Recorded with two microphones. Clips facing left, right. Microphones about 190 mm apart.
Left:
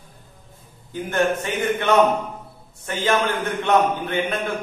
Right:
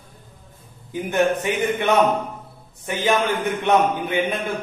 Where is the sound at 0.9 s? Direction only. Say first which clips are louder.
Right 2 dB; 15° right (ahead or behind).